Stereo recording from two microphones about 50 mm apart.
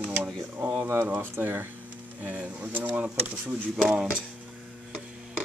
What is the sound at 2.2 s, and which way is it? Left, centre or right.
Speech, right.